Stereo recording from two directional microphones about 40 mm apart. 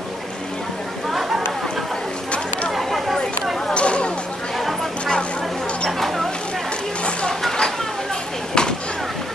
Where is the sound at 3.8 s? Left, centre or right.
Left.